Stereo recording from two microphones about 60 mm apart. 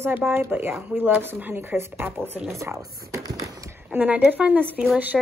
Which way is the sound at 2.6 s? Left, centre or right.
Right.